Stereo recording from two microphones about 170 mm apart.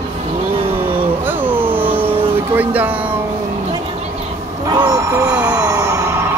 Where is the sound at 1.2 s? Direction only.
10° right (ahead or behind).